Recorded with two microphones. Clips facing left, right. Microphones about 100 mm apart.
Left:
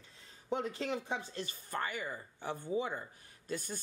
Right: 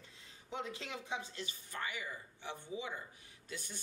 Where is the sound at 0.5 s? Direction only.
45° left (ahead or behind).